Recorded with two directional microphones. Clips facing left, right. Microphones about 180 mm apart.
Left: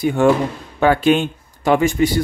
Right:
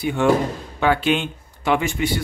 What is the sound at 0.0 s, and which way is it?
Speech, 45° left (ahead or behind).